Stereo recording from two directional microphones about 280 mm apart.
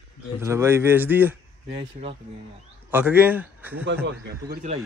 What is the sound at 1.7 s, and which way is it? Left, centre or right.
Speech, right.